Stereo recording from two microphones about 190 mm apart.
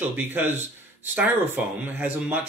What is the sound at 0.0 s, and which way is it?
Speech, 10° right (ahead or behind).